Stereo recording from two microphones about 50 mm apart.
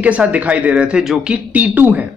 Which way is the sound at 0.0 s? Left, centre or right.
Right.